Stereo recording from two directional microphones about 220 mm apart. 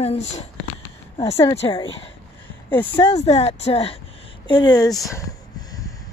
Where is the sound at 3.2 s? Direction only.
30° left (ahead or behind).